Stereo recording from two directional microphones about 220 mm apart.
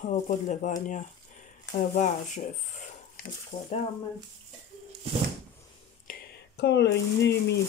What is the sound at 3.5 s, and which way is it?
Speech, 30° left (ahead or behind).